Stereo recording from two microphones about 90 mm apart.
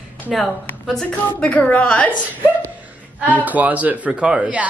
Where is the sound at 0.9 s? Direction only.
15° left (ahead or behind).